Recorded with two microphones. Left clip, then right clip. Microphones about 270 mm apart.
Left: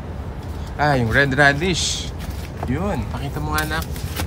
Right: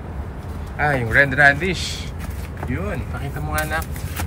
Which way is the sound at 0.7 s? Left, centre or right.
Centre.